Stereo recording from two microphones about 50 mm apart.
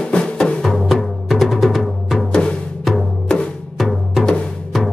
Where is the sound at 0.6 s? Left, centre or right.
Centre.